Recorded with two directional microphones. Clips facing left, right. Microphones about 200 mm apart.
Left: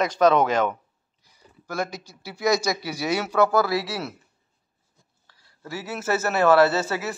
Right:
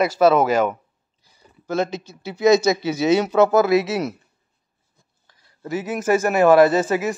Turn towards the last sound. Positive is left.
turn(degrees=-15)  # may be behind; listen again after turning